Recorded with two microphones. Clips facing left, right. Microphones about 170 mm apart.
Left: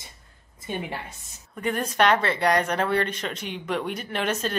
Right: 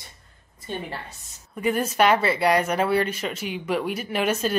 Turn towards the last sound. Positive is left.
turn(degrees=-10)  # may be behind; listen again after turning